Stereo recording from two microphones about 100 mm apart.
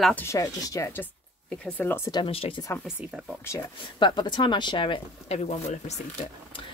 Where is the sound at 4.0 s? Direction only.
50° left (ahead or behind).